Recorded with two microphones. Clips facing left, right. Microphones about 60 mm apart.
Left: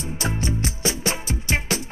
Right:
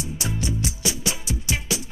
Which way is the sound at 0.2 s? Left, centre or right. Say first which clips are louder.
Left 3 dB; left.